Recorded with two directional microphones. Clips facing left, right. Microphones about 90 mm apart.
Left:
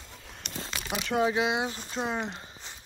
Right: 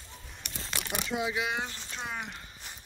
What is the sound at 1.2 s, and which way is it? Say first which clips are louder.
Speech: left 8 dB; 30° left (ahead or behind).